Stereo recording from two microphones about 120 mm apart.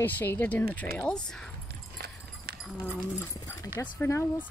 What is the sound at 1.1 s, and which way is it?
Speech, 5° left (ahead or behind).